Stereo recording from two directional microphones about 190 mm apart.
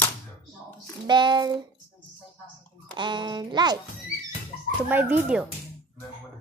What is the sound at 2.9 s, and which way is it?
Speech, 25° right (ahead or behind).